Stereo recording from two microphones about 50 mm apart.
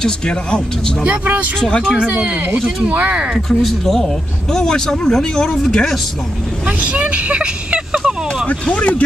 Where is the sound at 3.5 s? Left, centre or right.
Centre.